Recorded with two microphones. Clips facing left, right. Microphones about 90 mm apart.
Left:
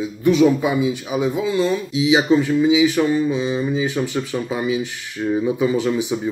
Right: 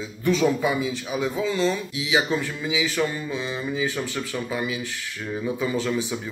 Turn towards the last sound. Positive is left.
turn(degrees=15)  # may be behind; listen again after turning